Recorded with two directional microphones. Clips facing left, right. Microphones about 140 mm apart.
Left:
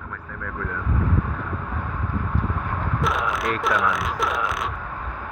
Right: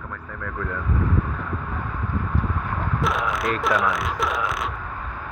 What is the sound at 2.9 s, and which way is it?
Speech, centre (ahead or behind).